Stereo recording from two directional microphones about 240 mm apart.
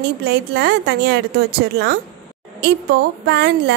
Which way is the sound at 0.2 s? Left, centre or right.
Right.